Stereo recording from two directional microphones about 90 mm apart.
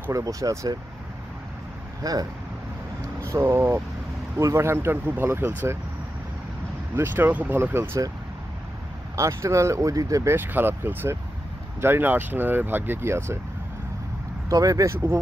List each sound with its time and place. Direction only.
0.1 s speech: 40° right (ahead or behind)
2.0 s speech: 40° right (ahead or behind)
3.3 s speech: 25° right (ahead or behind)
4.4 s speech: 35° right (ahead or behind)
7.0 s speech: 20° right (ahead or behind)
9.1 s speech: 35° right (ahead or behind)
10.3 s speech: 25° right (ahead or behind)
14.5 s speech: 40° right (ahead or behind)